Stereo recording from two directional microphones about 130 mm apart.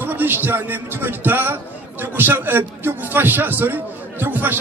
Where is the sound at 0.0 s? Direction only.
15° right (ahead or behind).